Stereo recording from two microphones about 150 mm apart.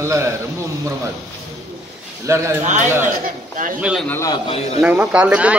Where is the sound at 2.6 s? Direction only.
55° right (ahead or behind).